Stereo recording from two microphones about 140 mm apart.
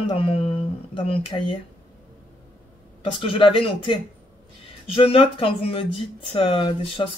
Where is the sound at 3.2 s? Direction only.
40° left (ahead or behind).